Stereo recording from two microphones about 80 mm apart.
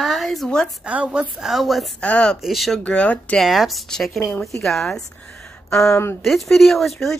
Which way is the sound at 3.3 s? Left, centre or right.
Centre.